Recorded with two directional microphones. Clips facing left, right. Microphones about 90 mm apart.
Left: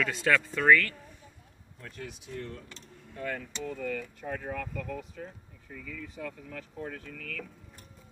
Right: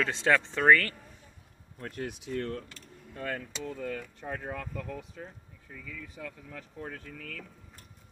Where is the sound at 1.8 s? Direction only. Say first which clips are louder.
Right 6 dB; 65° right (ahead or behind).